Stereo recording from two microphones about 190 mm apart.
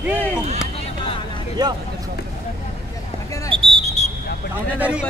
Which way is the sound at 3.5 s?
25° right (ahead or behind).